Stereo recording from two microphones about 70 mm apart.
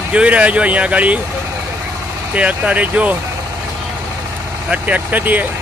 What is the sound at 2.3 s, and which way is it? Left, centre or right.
Speech, centre.